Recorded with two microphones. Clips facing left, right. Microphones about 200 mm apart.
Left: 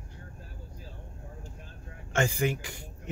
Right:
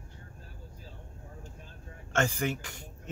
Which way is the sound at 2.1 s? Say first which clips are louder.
Left 2 dB; 10° left (ahead or behind).